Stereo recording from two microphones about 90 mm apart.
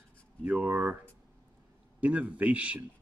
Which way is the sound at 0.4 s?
15° right (ahead or behind).